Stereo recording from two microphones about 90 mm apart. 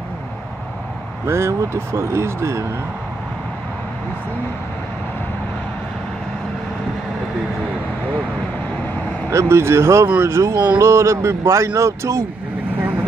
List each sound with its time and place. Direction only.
1.2 s speech: 30° right (ahead or behind)
9.3 s speech: 30° right (ahead or behind)